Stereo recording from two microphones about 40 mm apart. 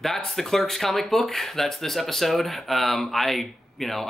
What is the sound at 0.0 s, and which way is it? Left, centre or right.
Speech, centre.